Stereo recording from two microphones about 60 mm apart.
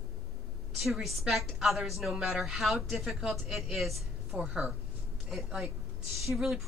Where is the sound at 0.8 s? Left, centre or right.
Centre.